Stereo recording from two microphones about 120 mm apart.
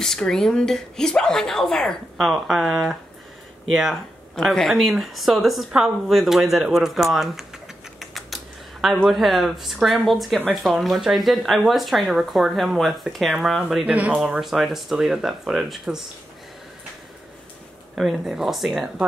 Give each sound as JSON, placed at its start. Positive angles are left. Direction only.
{"t": 0.0, "sound": "speech", "side_deg": 5}
{"t": 17.9, "sound": "speech", "side_deg": 0}